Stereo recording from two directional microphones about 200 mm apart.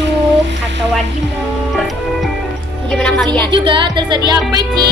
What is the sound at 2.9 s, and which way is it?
Music, 5° left (ahead or behind).